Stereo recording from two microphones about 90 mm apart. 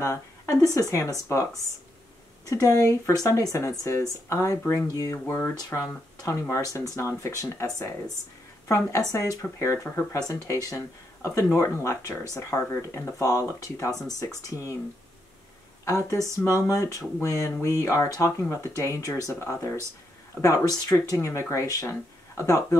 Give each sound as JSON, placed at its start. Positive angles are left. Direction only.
{"t": 0.0, "sound": "speech", "side_deg": 35}
{"t": 2.5, "sound": "a woman's voice", "side_deg": 35}
{"t": 15.8, "sound": "speech", "side_deg": 35}
{"t": 20.4, "sound": "speech", "side_deg": 45}
{"t": 21.0, "sound": "speech", "side_deg": 35}